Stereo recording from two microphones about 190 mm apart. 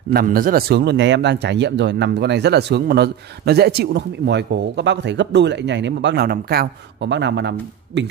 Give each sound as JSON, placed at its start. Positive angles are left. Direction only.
{"t": 0.1, "sound": "speech", "side_deg": -50}